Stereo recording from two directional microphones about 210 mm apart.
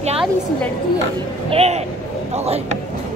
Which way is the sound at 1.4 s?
30° right (ahead or behind).